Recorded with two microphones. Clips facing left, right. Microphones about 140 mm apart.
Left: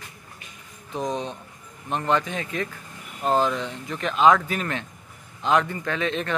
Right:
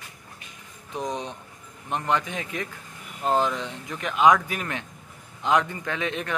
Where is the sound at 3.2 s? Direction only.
15° left (ahead or behind).